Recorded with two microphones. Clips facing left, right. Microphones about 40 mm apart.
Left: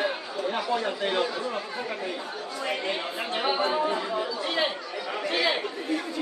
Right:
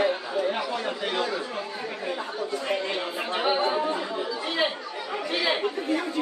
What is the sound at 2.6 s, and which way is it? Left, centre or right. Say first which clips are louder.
Speech: left 2 dB; centre.